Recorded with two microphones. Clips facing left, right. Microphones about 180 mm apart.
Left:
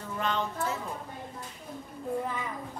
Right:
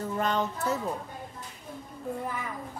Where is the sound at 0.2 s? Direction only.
40° right (ahead or behind).